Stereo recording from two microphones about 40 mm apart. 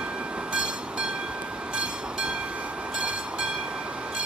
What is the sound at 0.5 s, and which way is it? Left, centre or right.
Train, right.